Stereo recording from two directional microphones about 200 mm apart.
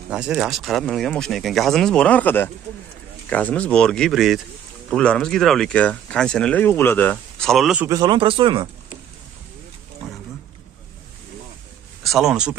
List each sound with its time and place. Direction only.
0.1 s speech: 5° right (ahead or behind)
7.9 s speech: 20° right (ahead or behind)
12.0 s speech: centre (ahead or behind)